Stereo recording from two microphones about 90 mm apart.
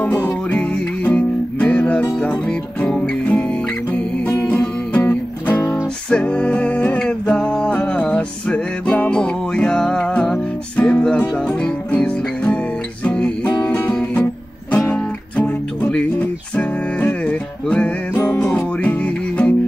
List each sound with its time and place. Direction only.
0.0 s music: 15° left (ahead or behind)